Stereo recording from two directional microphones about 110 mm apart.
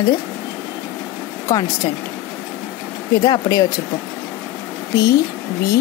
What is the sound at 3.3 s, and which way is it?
Speech, 35° left (ahead or behind).